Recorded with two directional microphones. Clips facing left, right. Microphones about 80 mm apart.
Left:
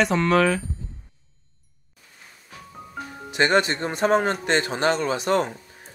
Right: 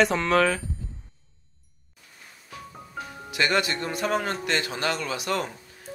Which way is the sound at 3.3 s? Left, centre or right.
Left.